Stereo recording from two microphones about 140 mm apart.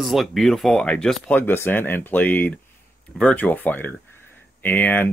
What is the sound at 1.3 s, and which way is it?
Speech, 15° left (ahead or behind).